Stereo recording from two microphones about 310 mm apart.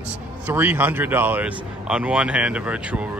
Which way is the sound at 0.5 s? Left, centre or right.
Centre.